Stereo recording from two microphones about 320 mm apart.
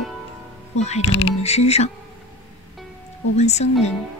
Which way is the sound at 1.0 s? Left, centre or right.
Left.